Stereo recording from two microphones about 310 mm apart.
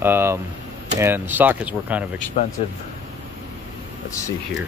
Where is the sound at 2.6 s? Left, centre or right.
Centre.